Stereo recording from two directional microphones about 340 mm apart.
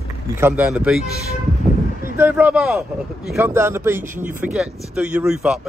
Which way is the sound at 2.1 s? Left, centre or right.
Centre.